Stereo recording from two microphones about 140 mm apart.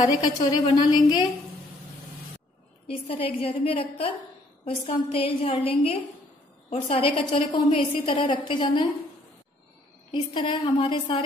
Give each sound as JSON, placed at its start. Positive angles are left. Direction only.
{"t": 0.0, "sound": "a woman's voice", "side_deg": 30}
{"t": 2.9, "sound": "a woman's voice", "side_deg": 45}
{"t": 10.1, "sound": "a woman's voice", "side_deg": 35}